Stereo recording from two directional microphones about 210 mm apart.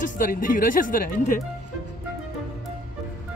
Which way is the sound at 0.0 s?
40° left (ahead or behind).